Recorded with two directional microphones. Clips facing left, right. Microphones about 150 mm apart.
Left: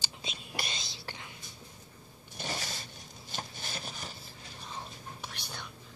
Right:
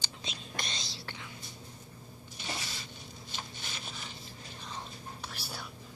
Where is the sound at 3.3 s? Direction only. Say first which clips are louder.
Left 4 dB; 45° left (ahead or behind).